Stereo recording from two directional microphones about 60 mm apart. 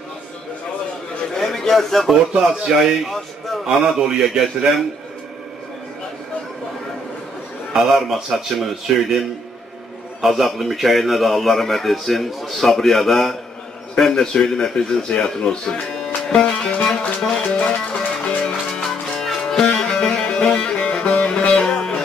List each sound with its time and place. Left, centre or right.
1.3 s a sound: centre
2.3 s speech: centre
2.7 s a man's voice: centre
7.7 s a man's voice: centre
10.2 s a man's voice: centre
16.3 s music: centre